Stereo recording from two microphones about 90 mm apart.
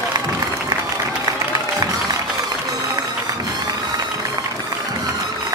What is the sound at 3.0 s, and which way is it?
Music, 45° right (ahead or behind).